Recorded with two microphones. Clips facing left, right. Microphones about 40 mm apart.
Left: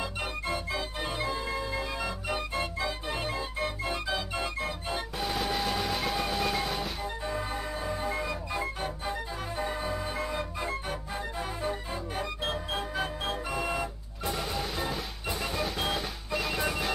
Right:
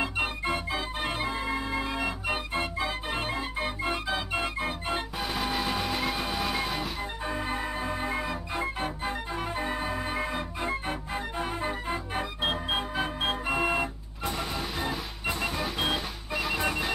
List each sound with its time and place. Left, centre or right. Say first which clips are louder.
0.0 s organ: right 4 dB; right
5.2 s train: left 2 dB; centre
7.2 s organ: right 3 dB; right
11.3 s music: right 2 dB; right
14.5 s music: right 1 dB; centre